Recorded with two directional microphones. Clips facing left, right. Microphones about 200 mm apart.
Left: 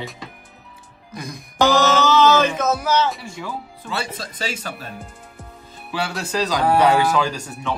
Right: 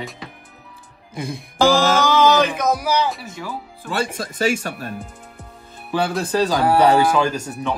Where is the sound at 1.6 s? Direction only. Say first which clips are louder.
Right 1 dB; 10° right (ahead or behind).